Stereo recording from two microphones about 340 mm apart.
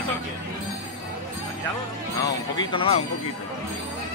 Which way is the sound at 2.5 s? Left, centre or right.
Centre.